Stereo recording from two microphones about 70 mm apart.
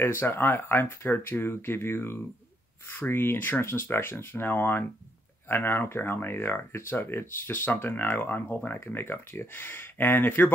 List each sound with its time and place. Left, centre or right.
0.0 s speech: left